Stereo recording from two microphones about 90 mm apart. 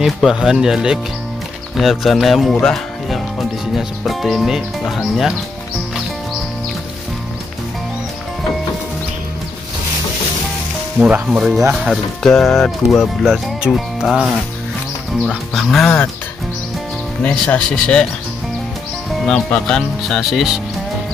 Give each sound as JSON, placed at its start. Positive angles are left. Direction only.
{"t": 0.0, "sound": "speech", "side_deg": -5}
{"t": 2.6, "sound": "music", "side_deg": 5}
{"t": 3.7, "sound": "speech", "side_deg": 0}
{"t": 11.0, "sound": "speech", "side_deg": -15}
{"t": 11.2, "sound": "speech", "side_deg": -5}
{"t": 12.2, "sound": "speech", "side_deg": 5}
{"t": 15.5, "sound": "speech", "side_deg": 0}
{"t": 17.2, "sound": "speech", "side_deg": 15}
{"t": 19.2, "sound": "speech", "side_deg": 10}
{"t": 20.0, "sound": "speech", "side_deg": 0}